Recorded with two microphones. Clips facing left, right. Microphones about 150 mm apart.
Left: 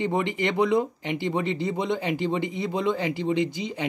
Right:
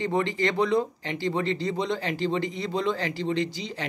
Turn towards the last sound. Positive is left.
turn(degrees=20)  # may be behind; listen again after turning